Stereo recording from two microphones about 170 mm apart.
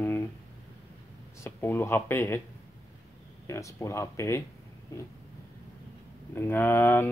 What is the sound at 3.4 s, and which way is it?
Speech, 15° left (ahead or behind).